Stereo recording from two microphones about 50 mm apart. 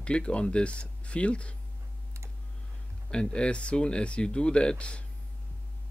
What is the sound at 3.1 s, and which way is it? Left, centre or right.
Speech, centre.